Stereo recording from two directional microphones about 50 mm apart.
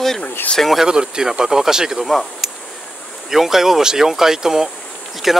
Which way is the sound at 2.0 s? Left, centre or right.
Centre.